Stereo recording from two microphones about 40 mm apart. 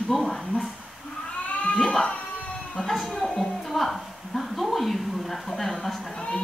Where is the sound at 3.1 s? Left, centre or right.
Left.